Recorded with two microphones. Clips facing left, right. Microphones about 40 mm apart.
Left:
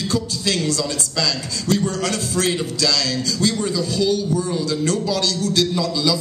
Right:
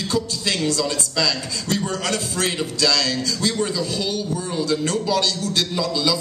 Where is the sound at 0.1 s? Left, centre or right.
Centre.